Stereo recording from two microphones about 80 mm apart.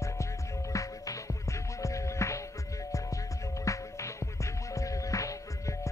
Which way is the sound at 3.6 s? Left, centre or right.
Left.